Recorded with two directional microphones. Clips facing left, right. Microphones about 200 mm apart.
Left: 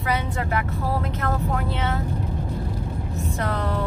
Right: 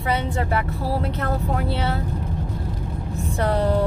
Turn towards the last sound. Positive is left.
turn(degrees=-30)  # may be behind; listen again after turning